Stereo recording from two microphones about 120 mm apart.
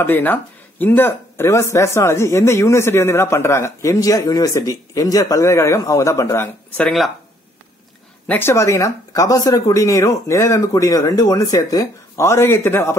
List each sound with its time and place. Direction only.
0.0 s speech: 15° left (ahead or behind)
6.8 s speech: centre (ahead or behind)
8.3 s speech: 20° left (ahead or behind)